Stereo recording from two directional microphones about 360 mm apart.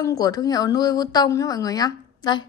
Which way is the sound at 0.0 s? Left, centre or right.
Centre.